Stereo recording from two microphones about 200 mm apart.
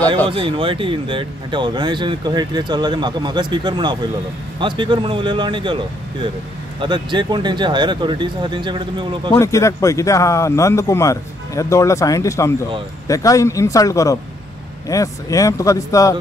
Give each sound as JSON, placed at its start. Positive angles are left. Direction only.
{"t": 0.3, "sound": "speech", "side_deg": -25}
{"t": 6.8, "sound": "speech", "side_deg": -25}
{"t": 9.3, "sound": "a man's voice", "side_deg": 15}